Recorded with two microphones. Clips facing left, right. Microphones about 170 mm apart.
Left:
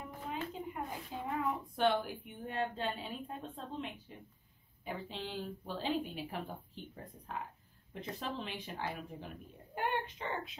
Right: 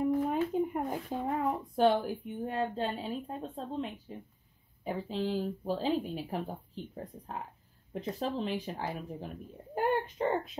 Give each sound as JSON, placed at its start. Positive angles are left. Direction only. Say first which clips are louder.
{"t": 0.0, "sound": "a sound", "louder": "right 13 dB", "side_deg": -55}
{"t": 1.1, "sound": "speech", "louder": "right 4 dB", "side_deg": -45}
{"t": 7.9, "sound": "speech", "louder": "right 7 dB", "side_deg": -35}